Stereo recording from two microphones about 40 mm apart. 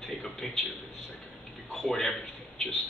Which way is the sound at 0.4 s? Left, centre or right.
Centre.